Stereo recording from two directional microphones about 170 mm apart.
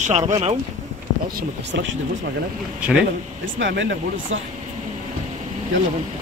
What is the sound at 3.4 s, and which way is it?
Speech, 90° right.